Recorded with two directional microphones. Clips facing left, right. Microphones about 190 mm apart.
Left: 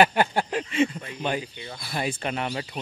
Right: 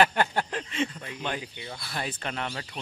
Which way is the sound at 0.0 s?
10° left (ahead or behind).